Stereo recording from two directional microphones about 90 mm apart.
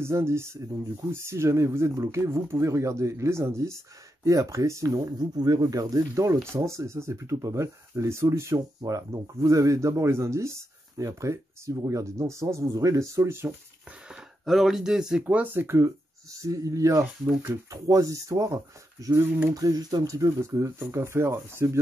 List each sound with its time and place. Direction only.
0.0 s speech: 30° right (ahead or behind)
14.4 s speech: centre (ahead or behind)
15.2 s speech: 20° right (ahead or behind); by 17.0 s 40° right (ahead or behind)
17.0 s speech: 25° right (ahead or behind)
17.6 s speech: 40° right (ahead or behind)